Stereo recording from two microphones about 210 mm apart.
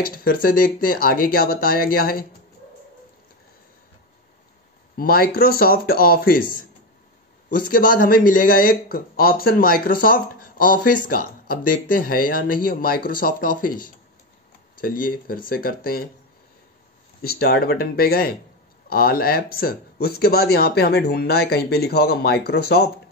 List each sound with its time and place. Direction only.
0.0 s speech: 45° left (ahead or behind)
4.9 s speech: 45° left (ahead or behind)
14.8 s speech: 40° left (ahead or behind)
17.2 s speech: 45° left (ahead or behind)